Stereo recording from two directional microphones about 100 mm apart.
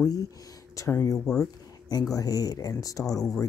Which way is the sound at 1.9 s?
40° left (ahead or behind).